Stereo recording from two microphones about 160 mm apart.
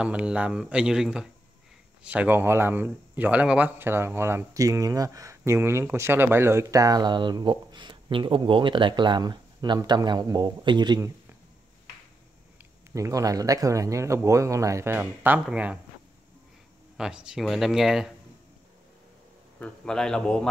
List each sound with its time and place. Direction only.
0.0 s a man's voice: 5° right (ahead or behind); by 11.0 s 30° right (ahead or behind)
12.9 s a man's voice: 20° right (ahead or behind)
16.9 s speech: 5° right (ahead or behind)
19.6 s speech: 5° left (ahead or behind)